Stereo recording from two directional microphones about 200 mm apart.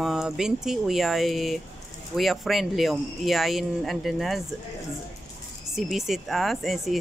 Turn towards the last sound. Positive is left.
turn(degrees=0)  # may be behind; listen again after turning